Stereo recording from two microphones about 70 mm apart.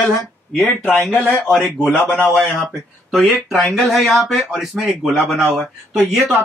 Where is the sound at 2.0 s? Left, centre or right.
Left.